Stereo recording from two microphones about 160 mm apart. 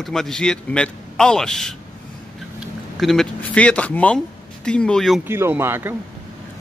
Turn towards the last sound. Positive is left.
turn(degrees=-15)  # may be behind; listen again after turning